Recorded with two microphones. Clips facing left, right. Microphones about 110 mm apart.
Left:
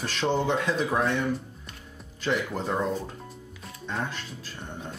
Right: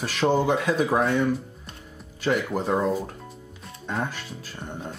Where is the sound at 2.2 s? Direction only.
5° right (ahead or behind).